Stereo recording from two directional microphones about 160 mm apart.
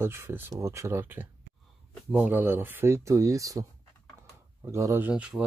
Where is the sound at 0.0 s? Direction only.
15° right (ahead or behind).